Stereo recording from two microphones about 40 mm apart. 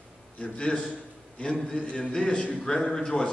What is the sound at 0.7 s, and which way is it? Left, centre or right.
A man's voice, left.